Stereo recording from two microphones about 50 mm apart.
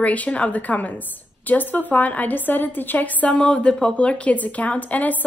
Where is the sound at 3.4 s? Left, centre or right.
Centre.